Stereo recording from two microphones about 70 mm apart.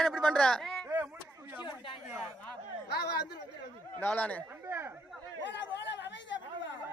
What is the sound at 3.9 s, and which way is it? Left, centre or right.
Speech, left.